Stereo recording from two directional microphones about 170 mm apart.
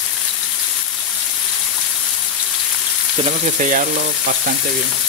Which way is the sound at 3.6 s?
50° right (ahead or behind).